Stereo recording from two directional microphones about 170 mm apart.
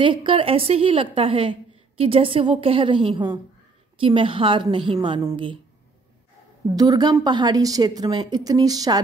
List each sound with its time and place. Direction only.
0.0 s a woman's voice: 30° right (ahead or behind)
6.7 s a woman's voice: 25° right (ahead or behind)